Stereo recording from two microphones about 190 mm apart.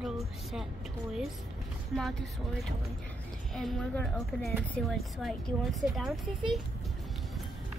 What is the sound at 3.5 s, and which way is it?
A woman's voice, centre (ahead or behind).